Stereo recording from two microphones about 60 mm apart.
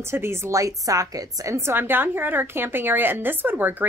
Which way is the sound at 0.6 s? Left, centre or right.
Right.